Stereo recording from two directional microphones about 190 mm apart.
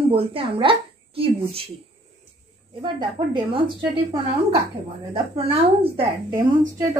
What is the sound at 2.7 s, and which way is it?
A woman's voice, 25° right (ahead or behind).